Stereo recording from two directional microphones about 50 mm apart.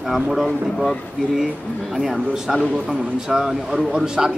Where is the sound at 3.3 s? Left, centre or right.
Centre.